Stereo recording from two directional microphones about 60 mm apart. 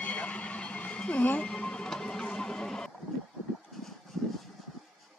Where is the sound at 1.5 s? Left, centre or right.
Centre.